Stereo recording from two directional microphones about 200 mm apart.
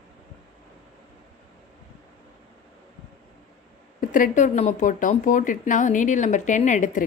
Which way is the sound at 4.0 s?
40° left (ahead or behind).